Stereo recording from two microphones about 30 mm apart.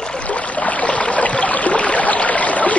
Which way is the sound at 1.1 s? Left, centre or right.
Left.